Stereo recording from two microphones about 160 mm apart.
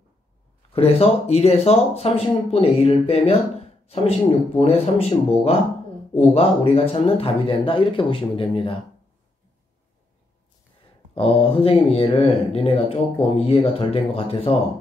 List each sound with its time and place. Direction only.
0.7 s speech: 40° left (ahead or behind)
4.6 s speech: 40° left (ahead or behind)
11.1 s speech: 35° left (ahead or behind)